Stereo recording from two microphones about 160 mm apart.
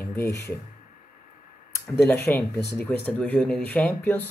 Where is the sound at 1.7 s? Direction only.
15° left (ahead or behind).